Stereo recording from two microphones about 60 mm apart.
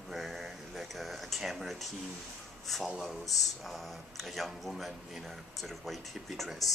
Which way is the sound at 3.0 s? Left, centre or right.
Centre.